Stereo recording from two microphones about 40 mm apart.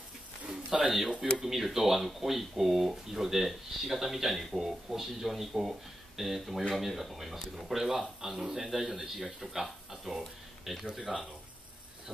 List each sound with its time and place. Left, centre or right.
0.5 s speech: centre
8.3 s speech: centre
8.5 s speech: centre